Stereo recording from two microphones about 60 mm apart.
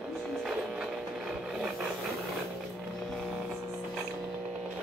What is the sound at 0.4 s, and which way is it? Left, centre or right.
Printer, centre.